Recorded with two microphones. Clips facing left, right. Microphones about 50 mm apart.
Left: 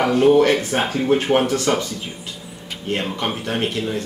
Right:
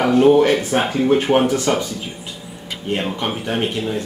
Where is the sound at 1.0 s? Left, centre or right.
Right.